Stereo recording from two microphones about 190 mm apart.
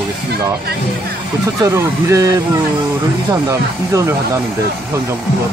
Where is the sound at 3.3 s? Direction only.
15° right (ahead or behind).